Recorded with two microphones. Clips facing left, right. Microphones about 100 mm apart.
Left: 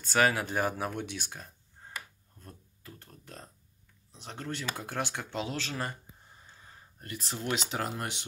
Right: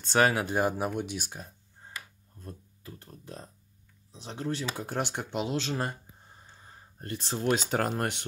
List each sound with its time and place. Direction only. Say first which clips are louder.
0.0 s speech: right 2 dB; 25° right (ahead or behind)
2.4 s speech: right 5 dB; 30° right (ahead or behind)
7.0 s speech: right 5 dB; 30° right (ahead or behind)
7.4 s speech: right 6 dB; 55° right (ahead or behind)